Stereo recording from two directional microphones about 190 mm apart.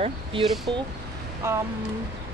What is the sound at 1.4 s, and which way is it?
Speech, 15° right (ahead or behind).